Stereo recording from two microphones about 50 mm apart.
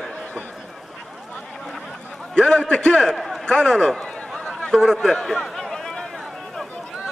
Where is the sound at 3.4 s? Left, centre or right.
Centre.